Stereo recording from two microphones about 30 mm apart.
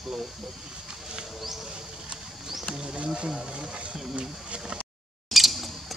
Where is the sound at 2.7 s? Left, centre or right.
Right.